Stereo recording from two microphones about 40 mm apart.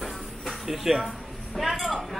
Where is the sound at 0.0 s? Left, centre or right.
Centre.